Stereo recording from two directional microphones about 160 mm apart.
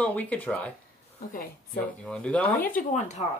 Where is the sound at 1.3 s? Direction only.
65° left (ahead or behind).